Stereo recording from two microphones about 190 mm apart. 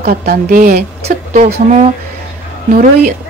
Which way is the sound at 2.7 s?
45° right (ahead or behind).